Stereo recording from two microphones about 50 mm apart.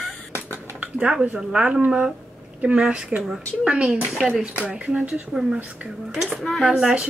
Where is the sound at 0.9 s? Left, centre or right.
Right.